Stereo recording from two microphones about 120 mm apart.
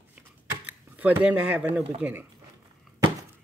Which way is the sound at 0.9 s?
15° right (ahead or behind).